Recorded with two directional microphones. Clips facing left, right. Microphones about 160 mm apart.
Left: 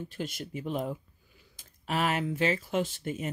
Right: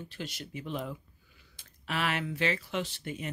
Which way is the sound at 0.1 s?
45° left (ahead or behind).